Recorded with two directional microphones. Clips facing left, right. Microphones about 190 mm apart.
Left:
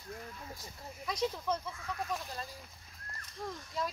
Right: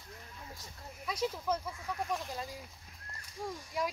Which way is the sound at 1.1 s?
10° right (ahead or behind).